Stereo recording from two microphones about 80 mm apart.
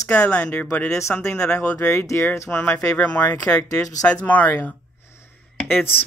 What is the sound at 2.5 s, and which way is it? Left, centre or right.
Speech, centre.